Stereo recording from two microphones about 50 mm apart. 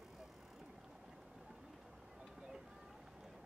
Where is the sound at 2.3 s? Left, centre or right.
Centre.